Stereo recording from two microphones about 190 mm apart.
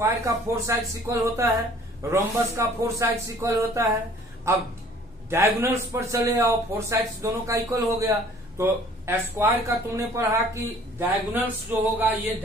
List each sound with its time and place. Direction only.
0.0 s a man's voice: 15° right (ahead or behind)